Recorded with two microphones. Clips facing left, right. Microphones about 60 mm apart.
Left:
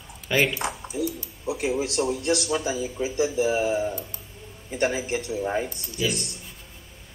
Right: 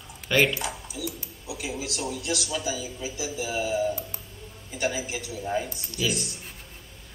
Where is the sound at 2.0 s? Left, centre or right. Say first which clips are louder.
Left 5 dB; left.